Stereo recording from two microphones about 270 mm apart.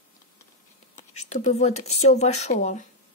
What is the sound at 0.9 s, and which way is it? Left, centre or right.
Speech, left.